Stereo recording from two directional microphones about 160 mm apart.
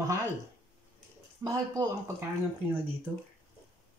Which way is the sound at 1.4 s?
20° right (ahead or behind).